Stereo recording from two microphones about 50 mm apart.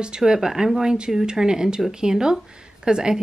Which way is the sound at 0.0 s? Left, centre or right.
Centre.